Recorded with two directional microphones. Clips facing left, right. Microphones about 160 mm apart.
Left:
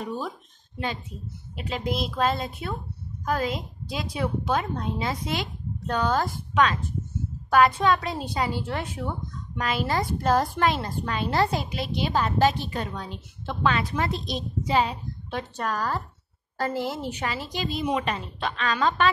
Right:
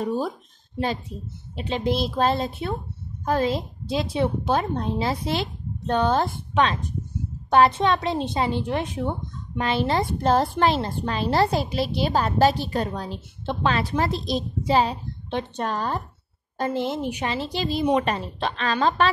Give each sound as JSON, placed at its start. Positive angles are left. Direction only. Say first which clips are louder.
{"t": 0.0, "sound": "a woman's voice", "louder": "right 6 dB", "side_deg": -35}
{"t": 1.5, "sound": "a woman's voice", "louder": "right 5 dB", "side_deg": -30}